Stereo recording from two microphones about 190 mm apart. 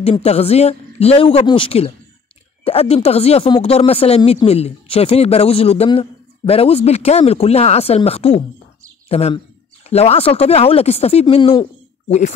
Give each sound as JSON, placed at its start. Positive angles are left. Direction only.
{"t": 0.0, "sound": "speech", "side_deg": 30}